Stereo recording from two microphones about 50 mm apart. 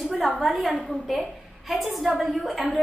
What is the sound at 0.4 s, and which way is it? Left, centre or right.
A woman's voice, centre.